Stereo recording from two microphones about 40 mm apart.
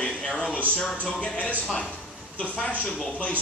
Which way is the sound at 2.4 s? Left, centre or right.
Left.